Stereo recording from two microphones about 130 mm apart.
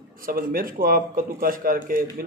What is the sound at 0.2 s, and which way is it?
A man's voice, 90° right.